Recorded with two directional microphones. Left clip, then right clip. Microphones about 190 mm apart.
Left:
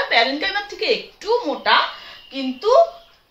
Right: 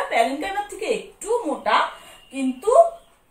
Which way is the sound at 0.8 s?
15° left (ahead or behind).